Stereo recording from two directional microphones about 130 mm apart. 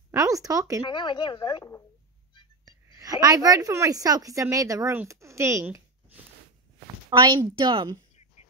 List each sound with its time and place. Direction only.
0.1 s speech: 25° right (ahead or behind)
0.8 s a woman's voice: 35° left (ahead or behind)
2.6 s a woman's voice: 30° right (ahead or behind)
7.1 s a woman's voice: 30° right (ahead or behind)